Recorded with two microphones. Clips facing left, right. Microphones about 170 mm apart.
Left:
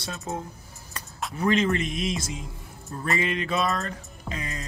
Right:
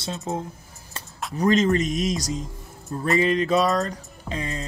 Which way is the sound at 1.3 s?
40° right (ahead or behind).